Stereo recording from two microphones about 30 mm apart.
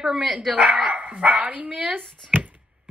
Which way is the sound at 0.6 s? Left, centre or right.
Right.